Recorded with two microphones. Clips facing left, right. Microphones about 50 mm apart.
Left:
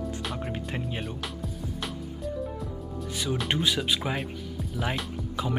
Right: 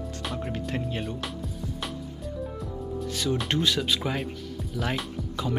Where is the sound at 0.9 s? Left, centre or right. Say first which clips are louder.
Right 2 dB; centre.